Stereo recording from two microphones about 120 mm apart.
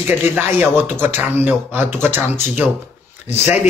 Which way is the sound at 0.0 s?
15° right (ahead or behind).